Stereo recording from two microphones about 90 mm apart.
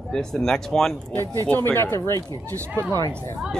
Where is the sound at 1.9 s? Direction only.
30° left (ahead or behind).